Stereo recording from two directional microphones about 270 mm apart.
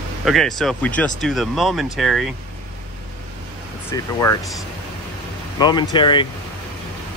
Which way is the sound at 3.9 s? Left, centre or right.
Centre.